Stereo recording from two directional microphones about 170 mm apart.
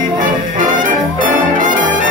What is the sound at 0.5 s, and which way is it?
Brass instrument, 55° right (ahead or behind).